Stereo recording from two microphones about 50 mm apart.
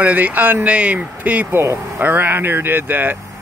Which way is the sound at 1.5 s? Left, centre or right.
Right.